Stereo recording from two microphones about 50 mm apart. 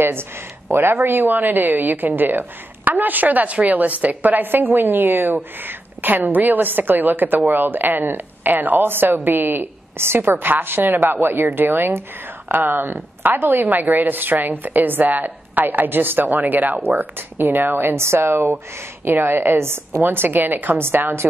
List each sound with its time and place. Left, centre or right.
0.0 s a woman's voice: right
13.7 s speech: right
16.8 s a woman's voice: right
20.0 s a woman's voice: right